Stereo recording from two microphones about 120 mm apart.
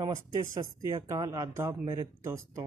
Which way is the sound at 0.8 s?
25° right (ahead or behind).